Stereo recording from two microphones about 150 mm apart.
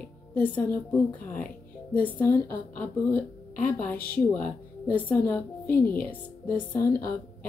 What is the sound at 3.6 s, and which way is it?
A woman's voice, 10° left (ahead or behind).